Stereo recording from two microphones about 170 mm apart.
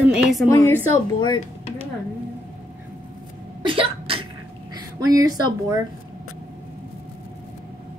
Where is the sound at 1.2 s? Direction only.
25° left (ahead or behind).